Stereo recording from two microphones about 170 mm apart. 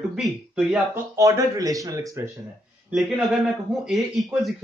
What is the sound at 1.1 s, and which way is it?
Speech, 20° right (ahead or behind).